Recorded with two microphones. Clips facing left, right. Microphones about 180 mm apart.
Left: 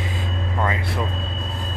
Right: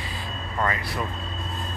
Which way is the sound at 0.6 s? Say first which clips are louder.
Left 2 dB; 20° left (ahead or behind).